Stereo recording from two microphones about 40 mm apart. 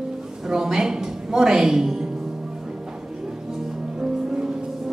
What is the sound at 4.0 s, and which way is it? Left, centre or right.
Music, centre.